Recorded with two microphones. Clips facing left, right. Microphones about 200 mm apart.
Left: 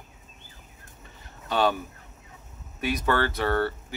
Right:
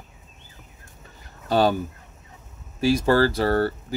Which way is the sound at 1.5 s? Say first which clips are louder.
Right 5 dB; 35° right (ahead or behind).